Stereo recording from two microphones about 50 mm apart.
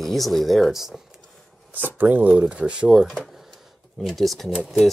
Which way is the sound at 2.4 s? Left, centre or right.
Right.